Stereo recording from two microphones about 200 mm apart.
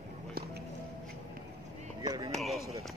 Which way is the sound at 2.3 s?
Centre (ahead or behind).